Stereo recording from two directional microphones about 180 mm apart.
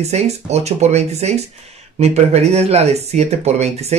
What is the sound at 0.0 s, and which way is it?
Speech, 35° right (ahead or behind).